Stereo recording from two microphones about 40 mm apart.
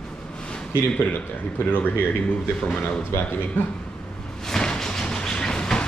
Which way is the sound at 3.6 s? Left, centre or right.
Left.